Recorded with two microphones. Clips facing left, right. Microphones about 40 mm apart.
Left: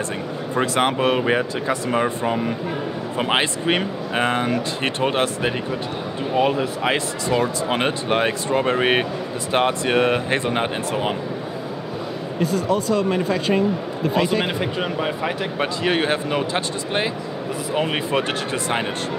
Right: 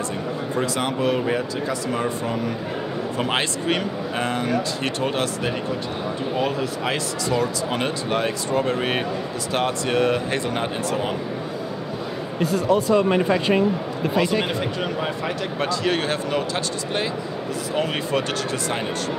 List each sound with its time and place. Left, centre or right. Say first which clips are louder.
0.6 s speech: left 5 dB; left
12.4 s speech: right 1 dB; centre
14.2 s speech: left 1 dB; centre